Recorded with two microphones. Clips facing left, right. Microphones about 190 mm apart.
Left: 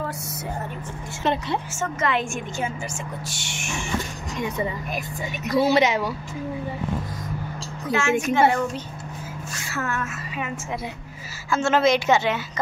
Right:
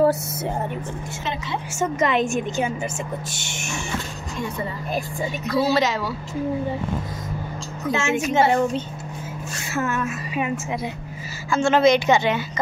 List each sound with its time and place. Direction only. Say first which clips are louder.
1.2 s a woman's voice: left 5 dB; 60° left (ahead or behind)
1.7 s a woman's voice: right 7 dB; 15° right (ahead or behind)
3.4 s music: right 1 dB; 45° right (ahead or behind)
5.5 s speech: left 2 dB; 20° left (ahead or behind)
7.9 s a woman's voice: even; 25° right (ahead or behind)
11.5 s a woman's voice: right 3 dB; 5° left (ahead or behind)